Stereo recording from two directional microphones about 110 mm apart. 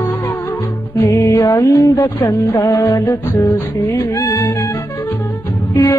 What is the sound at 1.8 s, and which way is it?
Music, 35° left (ahead or behind).